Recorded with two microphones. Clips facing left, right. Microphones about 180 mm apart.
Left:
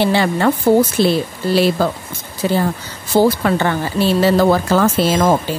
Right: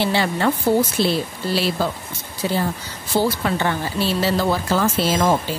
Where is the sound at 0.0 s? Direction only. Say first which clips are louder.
Left 5 dB; 55° left (ahead or behind).